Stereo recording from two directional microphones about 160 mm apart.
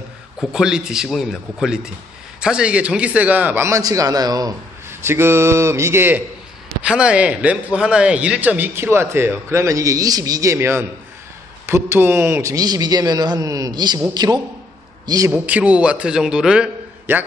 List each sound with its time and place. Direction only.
0.4 s a man's voice: 5° right (ahead or behind); by 15.3 s 20° right (ahead or behind)
15.3 s a man's voice: 10° right (ahead or behind)